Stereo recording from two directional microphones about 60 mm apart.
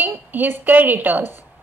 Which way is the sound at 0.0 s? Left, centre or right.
Right.